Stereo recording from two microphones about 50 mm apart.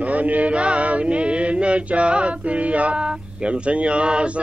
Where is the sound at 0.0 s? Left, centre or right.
Right.